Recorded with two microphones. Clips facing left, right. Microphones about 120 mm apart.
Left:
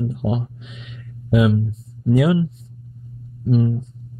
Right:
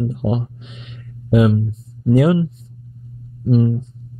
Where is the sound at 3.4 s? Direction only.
30° right (ahead or behind).